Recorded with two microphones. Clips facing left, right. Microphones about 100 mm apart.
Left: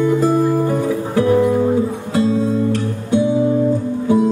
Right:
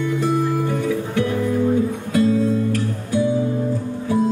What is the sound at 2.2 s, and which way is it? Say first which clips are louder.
Guitar: left 1 dB; 25° left (ahead or behind).